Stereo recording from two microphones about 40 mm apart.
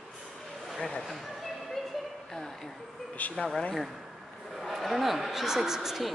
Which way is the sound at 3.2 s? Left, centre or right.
Left.